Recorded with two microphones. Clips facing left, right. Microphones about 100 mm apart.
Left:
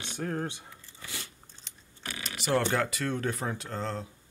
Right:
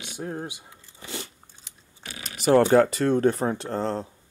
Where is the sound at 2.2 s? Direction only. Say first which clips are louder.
Right 9 dB; 45° right (ahead or behind).